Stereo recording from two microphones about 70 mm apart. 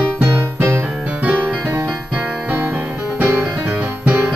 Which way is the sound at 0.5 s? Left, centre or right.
Right.